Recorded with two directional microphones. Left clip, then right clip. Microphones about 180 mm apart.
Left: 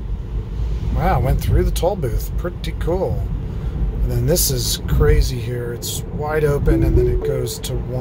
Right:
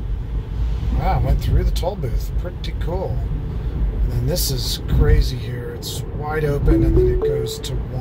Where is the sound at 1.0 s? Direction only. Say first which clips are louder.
Left 4 dB; 50° left (ahead or behind).